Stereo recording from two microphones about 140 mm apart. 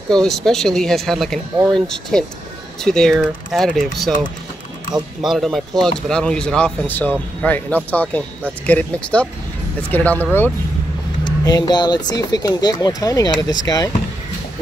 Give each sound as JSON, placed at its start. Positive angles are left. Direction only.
{"t": 0.1, "sound": "speech", "side_deg": 5}
{"t": 11.2, "sound": "speech", "side_deg": 30}